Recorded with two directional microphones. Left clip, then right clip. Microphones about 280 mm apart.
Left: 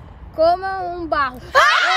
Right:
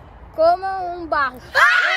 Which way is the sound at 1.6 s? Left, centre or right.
Left.